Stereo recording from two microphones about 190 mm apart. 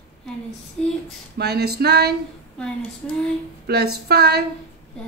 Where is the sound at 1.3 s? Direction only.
60° right (ahead or behind).